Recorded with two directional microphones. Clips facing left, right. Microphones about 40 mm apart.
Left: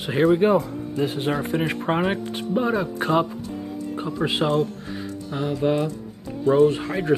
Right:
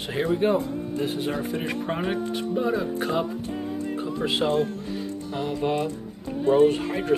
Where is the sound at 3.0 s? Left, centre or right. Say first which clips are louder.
Left 4 dB; left.